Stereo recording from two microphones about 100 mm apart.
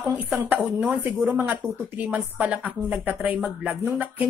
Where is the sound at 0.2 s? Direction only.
15° right (ahead or behind).